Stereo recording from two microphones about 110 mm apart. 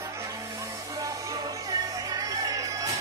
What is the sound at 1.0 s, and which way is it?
Music, 30° right (ahead or behind).